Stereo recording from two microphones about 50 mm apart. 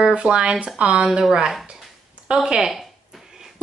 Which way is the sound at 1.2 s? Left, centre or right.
Centre.